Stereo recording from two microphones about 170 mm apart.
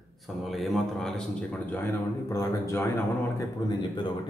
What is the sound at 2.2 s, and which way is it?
A man's voice, 15° left (ahead or behind).